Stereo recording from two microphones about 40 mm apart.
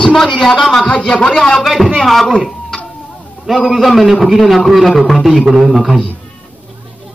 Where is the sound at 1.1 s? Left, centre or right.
Left.